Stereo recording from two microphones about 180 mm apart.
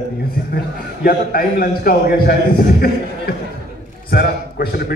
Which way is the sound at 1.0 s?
55° left (ahead or behind).